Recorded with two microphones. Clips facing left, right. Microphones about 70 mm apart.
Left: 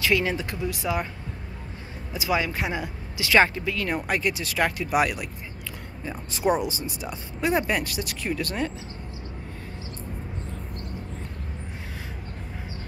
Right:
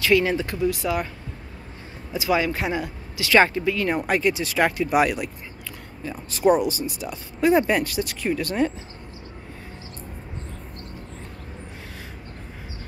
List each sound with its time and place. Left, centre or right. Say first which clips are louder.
0.0 s speech: right 4 dB; centre
2.1 s speech: right 3 dB; centre
3.3 s speech: right 3 dB; centre
6.0 s speech: right 5 dB; left
7.4 s speech: right 5 dB; centre